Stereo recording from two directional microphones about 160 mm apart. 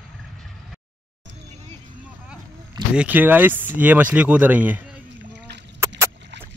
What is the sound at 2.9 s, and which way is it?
Speech, 10° right (ahead or behind).